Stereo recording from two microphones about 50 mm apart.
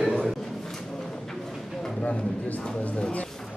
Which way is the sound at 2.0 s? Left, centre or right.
Left.